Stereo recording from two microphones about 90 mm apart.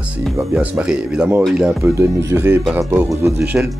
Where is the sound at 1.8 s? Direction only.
30° right (ahead or behind).